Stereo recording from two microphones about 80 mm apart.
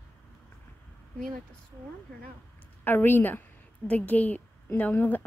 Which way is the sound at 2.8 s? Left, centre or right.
Left.